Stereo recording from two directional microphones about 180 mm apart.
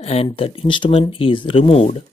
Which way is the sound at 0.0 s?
35° left (ahead or behind).